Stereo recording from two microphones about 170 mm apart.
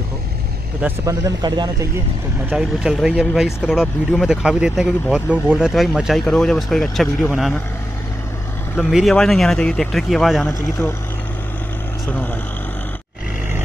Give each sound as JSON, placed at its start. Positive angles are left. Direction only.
{"t": 0.8, "sound": "a man's voice", "side_deg": -20}
{"t": 2.5, "sound": "speech", "side_deg": -5}
{"t": 8.7, "sound": "speech", "side_deg": 0}